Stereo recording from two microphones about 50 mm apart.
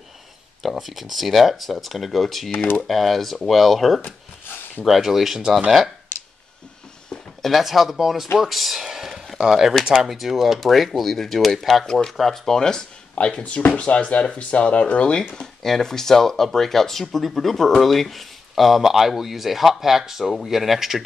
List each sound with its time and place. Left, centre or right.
0.6 s speech: centre
2.5 s speech: left
2.8 s speech: centre
4.0 s a sound: left
4.8 s speech: centre
7.4 s speech: centre
11.8 s speech: centre
13.1 s speech: left
15.3 s speech: centre